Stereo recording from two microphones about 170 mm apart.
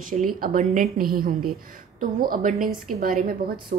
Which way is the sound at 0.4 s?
55° right (ahead or behind).